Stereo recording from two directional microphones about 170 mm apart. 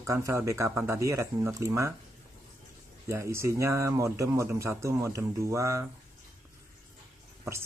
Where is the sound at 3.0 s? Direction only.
15° right (ahead or behind).